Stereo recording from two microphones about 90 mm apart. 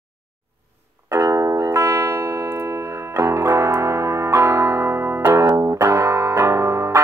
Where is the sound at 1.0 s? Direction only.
30° right (ahead or behind).